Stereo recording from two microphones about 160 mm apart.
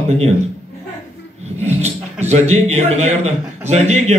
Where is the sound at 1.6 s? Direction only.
45° right (ahead or behind).